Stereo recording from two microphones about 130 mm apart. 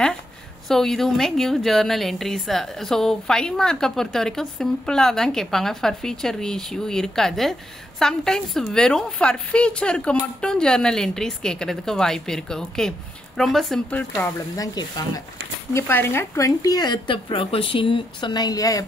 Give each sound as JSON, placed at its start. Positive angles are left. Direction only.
{"t": 0.7, "sound": "a woman's voice", "side_deg": 5}
{"t": 13.9, "sound": "speech", "side_deg": 10}
{"t": 14.6, "sound": "speech", "side_deg": 30}
{"t": 15.7, "sound": "speech", "side_deg": 15}